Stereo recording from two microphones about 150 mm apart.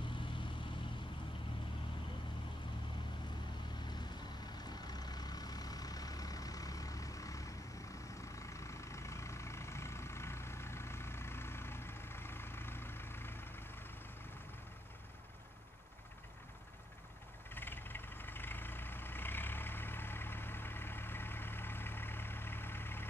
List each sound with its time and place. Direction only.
4.6 s vehicle: 25° left (ahead or behind)
17.6 s vehicle: 15° left (ahead or behind)